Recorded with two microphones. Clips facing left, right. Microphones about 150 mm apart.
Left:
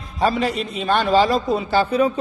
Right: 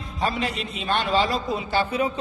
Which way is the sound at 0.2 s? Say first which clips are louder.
Left 6 dB; 40° left (ahead or behind).